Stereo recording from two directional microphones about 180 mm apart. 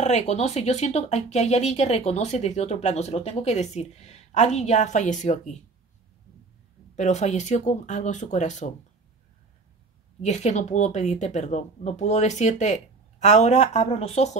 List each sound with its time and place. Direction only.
0.0 s speech: 40° left (ahead or behind)
7.0 s speech: 40° left (ahead or behind)
10.2 s speech: 40° left (ahead or behind)